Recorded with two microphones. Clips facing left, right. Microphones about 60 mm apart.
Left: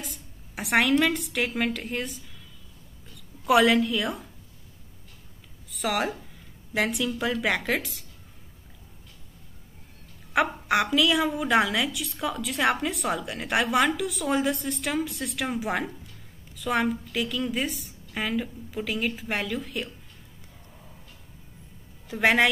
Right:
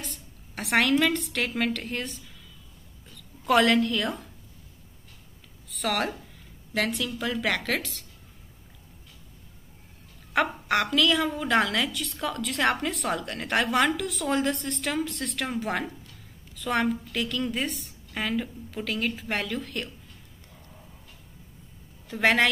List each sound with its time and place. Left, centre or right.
0.0 s a woman's voice: centre
5.7 s a woman's voice: centre
10.3 s a woman's voice: centre
22.1 s a woman's voice: centre